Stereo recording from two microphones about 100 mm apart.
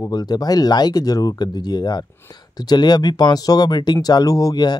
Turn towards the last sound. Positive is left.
turn(degrees=40)  # may be behind; listen again after turning